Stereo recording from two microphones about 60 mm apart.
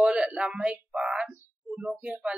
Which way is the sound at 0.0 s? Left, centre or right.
Centre.